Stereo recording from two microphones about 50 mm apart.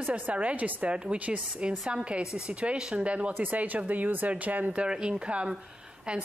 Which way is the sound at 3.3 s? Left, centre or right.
Right.